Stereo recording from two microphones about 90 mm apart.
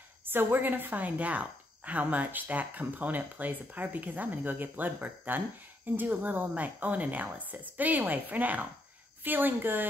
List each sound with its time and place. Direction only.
0.2 s a woman's voice: 25° right (ahead or behind)